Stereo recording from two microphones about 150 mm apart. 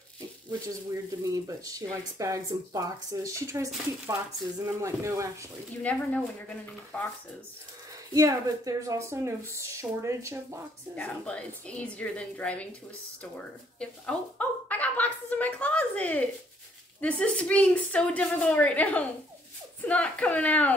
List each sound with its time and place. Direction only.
1.2 s speech: 25° right (ahead or behind)
5.8 s a woman's voice: 10° left (ahead or behind)
8.1 s speech: 20° right (ahead or behind)
11.0 s a woman's voice: 10° left (ahead or behind)
14.7 s a sound: 10° left (ahead or behind)
17.0 s a woman's voice: 10° left (ahead or behind)